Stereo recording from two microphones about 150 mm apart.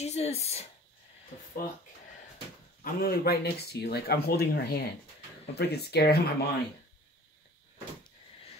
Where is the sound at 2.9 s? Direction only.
85° left.